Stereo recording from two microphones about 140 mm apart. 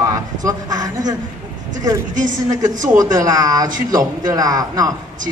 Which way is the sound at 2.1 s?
65° right (ahead or behind).